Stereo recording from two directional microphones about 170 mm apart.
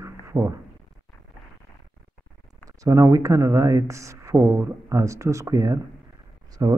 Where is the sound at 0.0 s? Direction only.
15° right (ahead or behind).